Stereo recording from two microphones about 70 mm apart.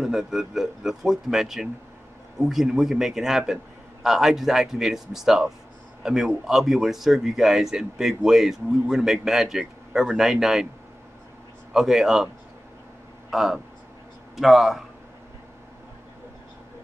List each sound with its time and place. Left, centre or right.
0.0 s speech: centre
11.7 s speech: centre
13.3 s speech: centre